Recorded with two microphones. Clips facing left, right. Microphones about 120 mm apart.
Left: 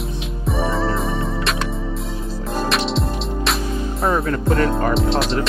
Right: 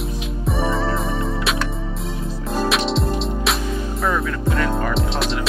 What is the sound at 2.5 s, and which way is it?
Music, centre (ahead or behind).